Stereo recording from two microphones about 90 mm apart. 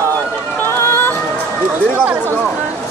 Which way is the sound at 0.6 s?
30° left (ahead or behind).